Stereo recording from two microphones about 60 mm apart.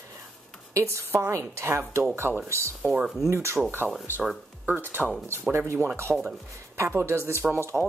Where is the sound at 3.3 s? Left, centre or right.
Right.